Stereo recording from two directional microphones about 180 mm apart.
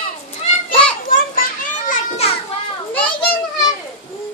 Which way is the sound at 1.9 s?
35° left (ahead or behind).